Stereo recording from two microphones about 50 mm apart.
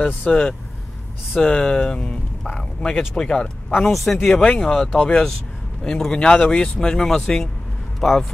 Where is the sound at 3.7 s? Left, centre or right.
Centre.